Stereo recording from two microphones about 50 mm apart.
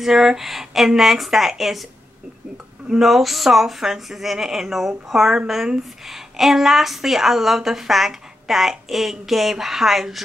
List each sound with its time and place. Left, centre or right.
0.0 s a woman's voice: centre